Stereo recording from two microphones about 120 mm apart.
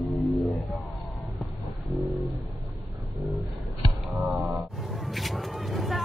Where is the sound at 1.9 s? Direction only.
Centre (ahead or behind).